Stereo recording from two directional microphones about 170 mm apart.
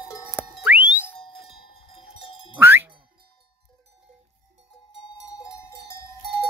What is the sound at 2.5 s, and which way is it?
Jingle, 10° right (ahead or behind).